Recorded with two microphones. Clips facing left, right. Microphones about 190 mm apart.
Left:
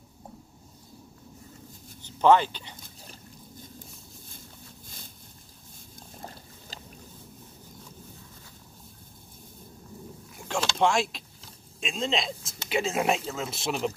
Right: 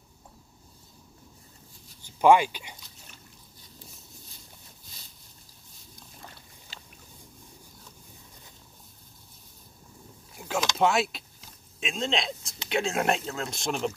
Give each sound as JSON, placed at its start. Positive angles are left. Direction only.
{"t": 2.0, "sound": "a sound", "side_deg": -10}
{"t": 3.0, "sound": "dog", "side_deg": 35}
{"t": 4.8, "sound": "a sound", "side_deg": 50}
{"t": 5.9, "sound": "boat", "side_deg": 40}
{"t": 10.5, "sound": "vehicle", "side_deg": -5}
{"t": 11.8, "sound": "speech", "side_deg": 0}